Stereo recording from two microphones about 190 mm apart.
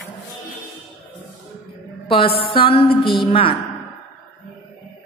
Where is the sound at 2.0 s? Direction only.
30° left (ahead or behind).